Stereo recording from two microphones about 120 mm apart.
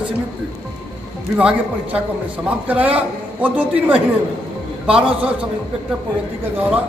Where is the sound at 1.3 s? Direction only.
10° right (ahead or behind).